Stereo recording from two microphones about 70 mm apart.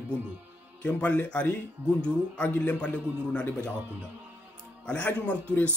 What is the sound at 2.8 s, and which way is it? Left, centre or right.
Speech, centre.